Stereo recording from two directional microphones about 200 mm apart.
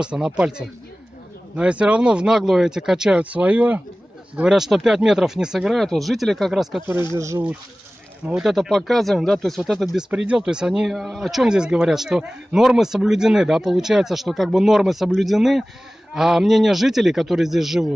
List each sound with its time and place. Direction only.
0.0 s speech: 5° right (ahead or behind)
7.2 s speech: 15° right (ahead or behind)
8.3 s speech: centre (ahead or behind)